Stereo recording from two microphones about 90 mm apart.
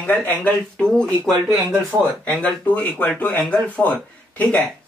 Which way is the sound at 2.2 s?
15° left (ahead or behind).